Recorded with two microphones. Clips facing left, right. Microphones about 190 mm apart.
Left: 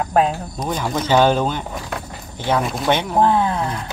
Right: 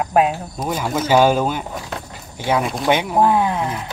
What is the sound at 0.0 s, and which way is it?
Speech, 10° right (ahead or behind).